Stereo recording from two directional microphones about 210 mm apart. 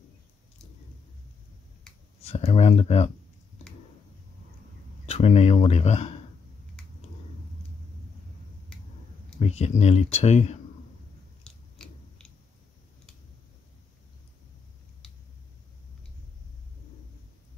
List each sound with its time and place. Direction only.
2.2 s speech: 30° left (ahead or behind)
5.0 s speech: 30° left (ahead or behind)
9.4 s speech: 30° left (ahead or behind)
11.4 s biting: 5° left (ahead or behind)